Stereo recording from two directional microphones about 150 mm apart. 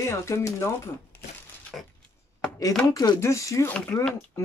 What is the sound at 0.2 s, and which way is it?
Speech, 20° left (ahead or behind).